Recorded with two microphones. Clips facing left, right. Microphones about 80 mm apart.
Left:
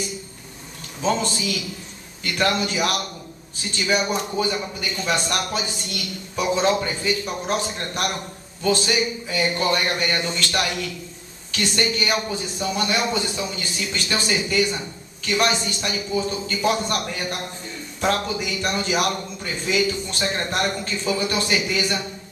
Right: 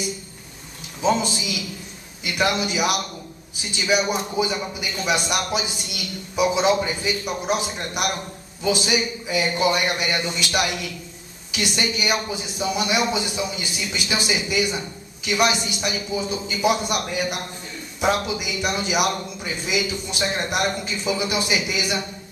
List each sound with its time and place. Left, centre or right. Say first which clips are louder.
1.0 s a man's voice: right 1 dB; centre